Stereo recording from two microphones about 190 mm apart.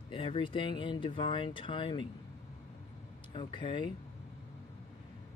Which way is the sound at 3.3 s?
25° left (ahead or behind).